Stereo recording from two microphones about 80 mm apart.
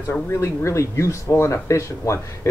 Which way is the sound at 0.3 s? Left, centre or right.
Left.